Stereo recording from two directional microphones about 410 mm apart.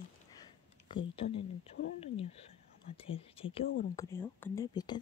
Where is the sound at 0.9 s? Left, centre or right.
Centre.